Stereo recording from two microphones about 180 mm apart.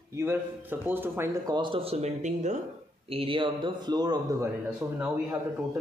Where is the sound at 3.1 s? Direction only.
30° right (ahead or behind); by 5.2 s 10° right (ahead or behind).